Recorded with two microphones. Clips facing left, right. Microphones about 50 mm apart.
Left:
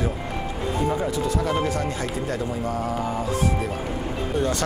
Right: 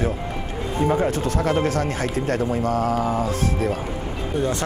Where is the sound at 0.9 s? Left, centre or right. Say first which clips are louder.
Right 3 dB; right.